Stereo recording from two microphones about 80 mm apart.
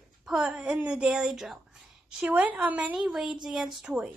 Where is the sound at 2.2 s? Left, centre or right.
Centre.